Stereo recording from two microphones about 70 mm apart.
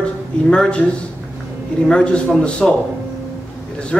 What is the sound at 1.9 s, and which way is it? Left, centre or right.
Speech, centre.